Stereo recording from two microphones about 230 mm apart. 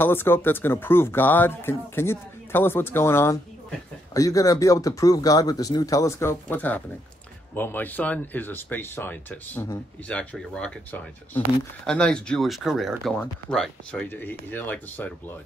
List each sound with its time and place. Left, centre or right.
0.0 s speech: centre